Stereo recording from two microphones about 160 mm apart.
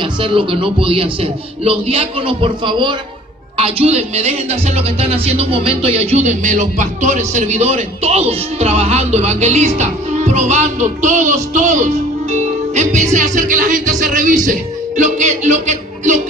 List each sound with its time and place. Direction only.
0.0 s speech: 35° right (ahead or behind)